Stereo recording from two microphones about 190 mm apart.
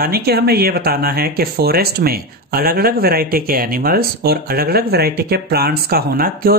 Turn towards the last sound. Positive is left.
turn(degrees=-50)  # may be behind; listen again after turning